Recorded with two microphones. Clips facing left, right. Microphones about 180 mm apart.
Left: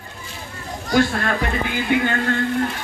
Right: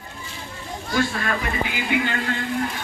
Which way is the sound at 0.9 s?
65° left (ahead or behind).